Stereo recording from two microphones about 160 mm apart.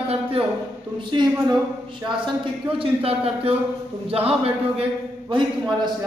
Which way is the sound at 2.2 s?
30° right (ahead or behind).